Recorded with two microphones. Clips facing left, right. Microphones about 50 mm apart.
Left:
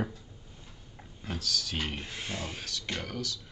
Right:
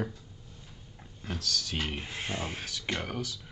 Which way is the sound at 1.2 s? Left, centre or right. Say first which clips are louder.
Even; centre.